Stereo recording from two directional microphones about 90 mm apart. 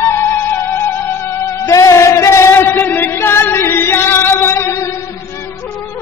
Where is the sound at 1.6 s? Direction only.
35° left (ahead or behind).